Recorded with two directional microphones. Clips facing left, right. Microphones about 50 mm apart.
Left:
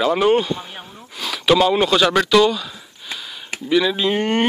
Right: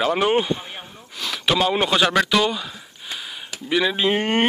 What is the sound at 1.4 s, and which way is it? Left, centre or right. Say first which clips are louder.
Speech: left 5 dB; centre.